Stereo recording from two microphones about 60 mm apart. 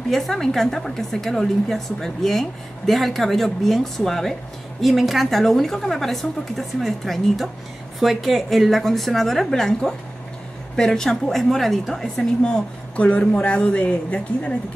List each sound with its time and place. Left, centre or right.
0.1 s a woman's voice: centre
12.4 s speech: centre